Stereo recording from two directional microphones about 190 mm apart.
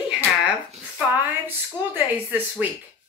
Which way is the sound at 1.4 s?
10° right (ahead or behind).